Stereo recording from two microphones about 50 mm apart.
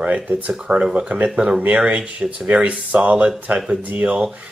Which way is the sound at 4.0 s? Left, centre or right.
Right.